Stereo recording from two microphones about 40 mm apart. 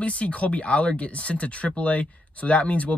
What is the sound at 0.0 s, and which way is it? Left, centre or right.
Speech, left.